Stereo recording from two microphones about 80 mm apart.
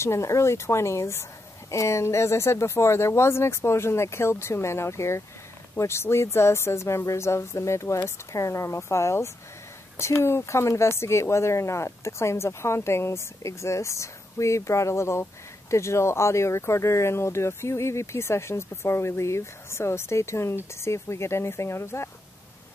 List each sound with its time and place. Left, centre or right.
0.0 s speech: left